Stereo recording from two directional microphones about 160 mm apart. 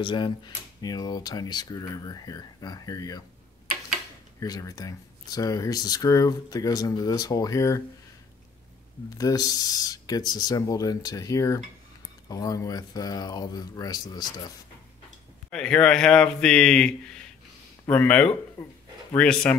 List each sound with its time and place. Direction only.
0.0 s speech: 30° left (ahead or behind)
4.4 s speech: 20° left (ahead or behind)
9.2 s speech: 25° left (ahead or behind)
15.5 s speech: 5° left (ahead or behind)
18.6 s speech: 20° left (ahead or behind)
19.1 s speech: 5° left (ahead or behind)